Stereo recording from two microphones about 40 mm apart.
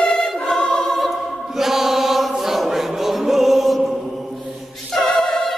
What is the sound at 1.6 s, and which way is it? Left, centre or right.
Chant, centre.